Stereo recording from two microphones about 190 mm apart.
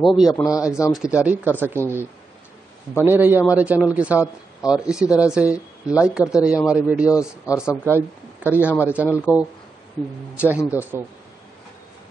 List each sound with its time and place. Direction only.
0.0 s speech: centre (ahead or behind)
0.3 s speech: 20° left (ahead or behind)
0.9 s speech: 5° right (ahead or behind)
3.1 s speech: 10° right (ahead or behind)
7.1 s speech: 15° left (ahead or behind)
8.5 s speech: 10° right (ahead or behind)
9.1 s speech: 10° left (ahead or behind)
10.3 s speech: 5° right (ahead or behind)